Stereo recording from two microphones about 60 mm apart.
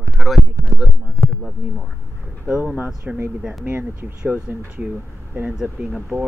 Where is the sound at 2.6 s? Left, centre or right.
Right.